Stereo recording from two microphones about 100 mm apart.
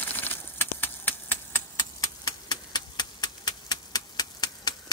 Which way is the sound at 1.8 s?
35° left (ahead or behind).